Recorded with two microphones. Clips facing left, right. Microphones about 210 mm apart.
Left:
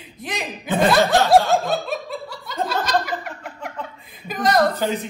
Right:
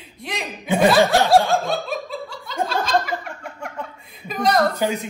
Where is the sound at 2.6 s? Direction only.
Centre (ahead or behind).